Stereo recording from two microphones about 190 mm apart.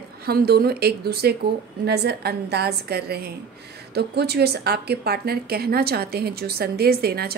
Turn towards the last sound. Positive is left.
turn(degrees=-55)  # may be behind; listen again after turning